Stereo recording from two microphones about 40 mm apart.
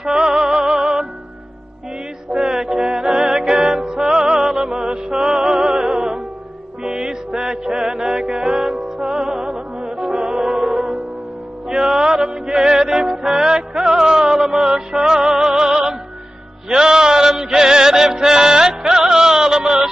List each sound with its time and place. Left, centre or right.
0.0 s music: centre
2.4 s music: centre